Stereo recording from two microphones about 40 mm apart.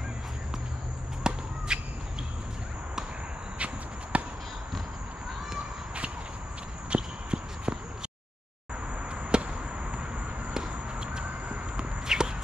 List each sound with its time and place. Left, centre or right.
1.3 s a sound: right
3.5 s walk: right
6.9 s clip-clop: right
9.1 s chop: right
10.5 s a sound: right
11.7 s walk: centre